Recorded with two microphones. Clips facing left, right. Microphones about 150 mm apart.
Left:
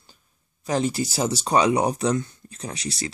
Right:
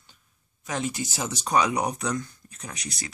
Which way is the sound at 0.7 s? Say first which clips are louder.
Left 6 dB; 35° left (ahead or behind).